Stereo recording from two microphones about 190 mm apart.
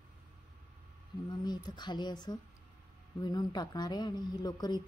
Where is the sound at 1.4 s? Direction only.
20° left (ahead or behind).